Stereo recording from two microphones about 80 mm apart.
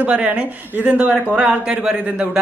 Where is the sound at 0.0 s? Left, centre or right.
Centre.